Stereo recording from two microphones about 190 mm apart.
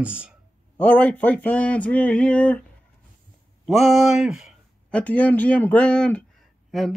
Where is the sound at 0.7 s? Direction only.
10° left (ahead or behind).